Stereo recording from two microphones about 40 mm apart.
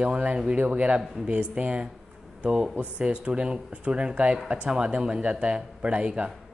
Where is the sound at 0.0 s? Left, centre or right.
Right.